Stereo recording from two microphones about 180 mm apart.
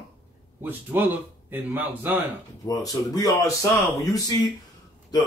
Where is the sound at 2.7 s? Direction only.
20° left (ahead or behind).